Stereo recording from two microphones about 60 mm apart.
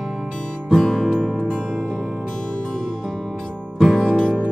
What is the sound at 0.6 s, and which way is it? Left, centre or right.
Music, centre.